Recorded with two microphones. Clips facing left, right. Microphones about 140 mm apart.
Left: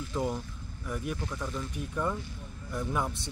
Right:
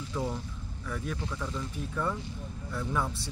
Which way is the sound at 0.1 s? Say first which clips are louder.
Left 2 dB; 15° left (ahead or behind).